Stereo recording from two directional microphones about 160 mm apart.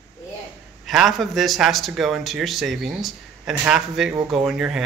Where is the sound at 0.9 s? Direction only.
Centre (ahead or behind).